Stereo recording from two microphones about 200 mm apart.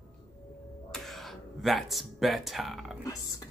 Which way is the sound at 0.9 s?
Centre (ahead or behind).